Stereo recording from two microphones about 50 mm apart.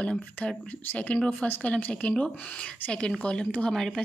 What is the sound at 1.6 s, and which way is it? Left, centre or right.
Speech, left.